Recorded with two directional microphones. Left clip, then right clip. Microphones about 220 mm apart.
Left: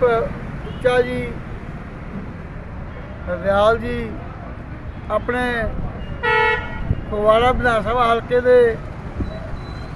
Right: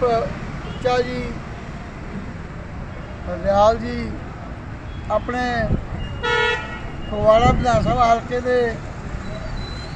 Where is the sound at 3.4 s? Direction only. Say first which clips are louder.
Even; 5° left (ahead or behind).